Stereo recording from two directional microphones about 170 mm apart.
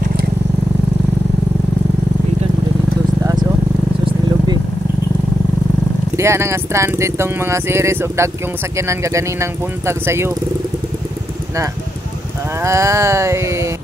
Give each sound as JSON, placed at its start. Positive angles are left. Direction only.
{"t": 6.1, "sound": "speech", "side_deg": -15}
{"t": 12.6, "sound": "speech", "side_deg": -15}